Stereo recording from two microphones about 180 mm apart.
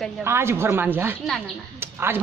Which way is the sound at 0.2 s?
15° right (ahead or behind).